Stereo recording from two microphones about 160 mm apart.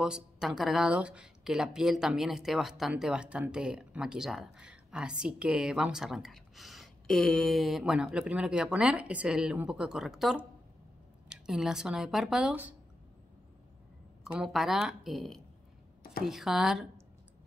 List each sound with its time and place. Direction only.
0.0 s speech: 5° right (ahead or behind)
14.2 s speech: centre (ahead or behind)
16.0 s a sound: 65° left (ahead or behind)
16.3 s speech: centre (ahead or behind)